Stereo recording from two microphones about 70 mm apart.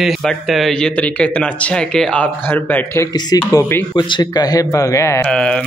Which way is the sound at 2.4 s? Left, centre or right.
Left.